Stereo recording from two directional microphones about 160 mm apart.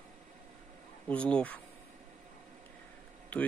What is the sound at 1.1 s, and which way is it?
Speech, 5° left (ahead or behind).